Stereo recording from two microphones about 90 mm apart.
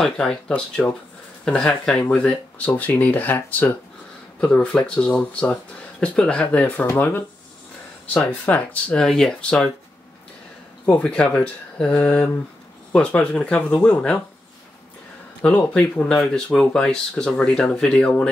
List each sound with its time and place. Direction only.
0.0 s speech: 5° left (ahead or behind)
6.9 s speech: 25° left (ahead or behind)
8.5 s speech: 15° left (ahead or behind)
10.9 s speech: 10° left (ahead or behind)
15.4 s speech: 10° left (ahead or behind)